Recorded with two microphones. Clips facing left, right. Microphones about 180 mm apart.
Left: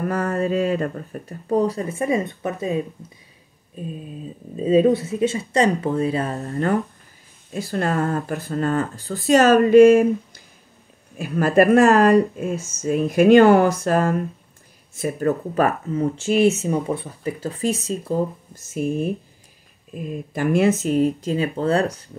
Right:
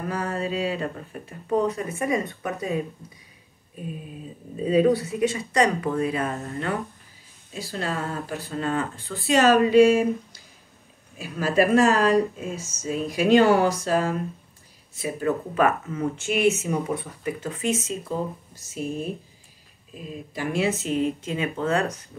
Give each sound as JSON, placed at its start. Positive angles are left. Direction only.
{"t": 0.0, "sound": "speech", "side_deg": 55}
{"t": 4.6, "sound": "speech", "side_deg": 25}
{"t": 7.5, "sound": "speech", "side_deg": 55}
{"t": 8.5, "sound": "speech", "side_deg": 40}
{"t": 9.6, "sound": "speech", "side_deg": 55}
{"t": 18.5, "sound": "speech", "side_deg": 55}
{"t": 20.9, "sound": "speech", "side_deg": 35}